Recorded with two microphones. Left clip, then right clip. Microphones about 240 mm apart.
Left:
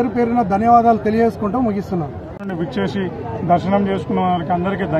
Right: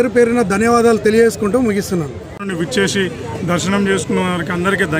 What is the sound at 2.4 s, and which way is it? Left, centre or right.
Speech, centre.